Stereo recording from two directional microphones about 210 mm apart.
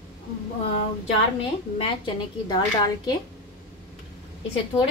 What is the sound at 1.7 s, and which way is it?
Speech, 25° left (ahead or behind).